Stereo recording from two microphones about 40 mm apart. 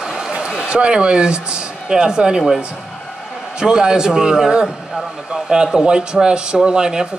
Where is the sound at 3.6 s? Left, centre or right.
Centre.